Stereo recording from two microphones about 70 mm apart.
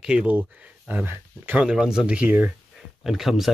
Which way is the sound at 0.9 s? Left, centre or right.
Right.